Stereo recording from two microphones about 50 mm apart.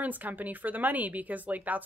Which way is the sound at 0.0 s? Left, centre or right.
Right.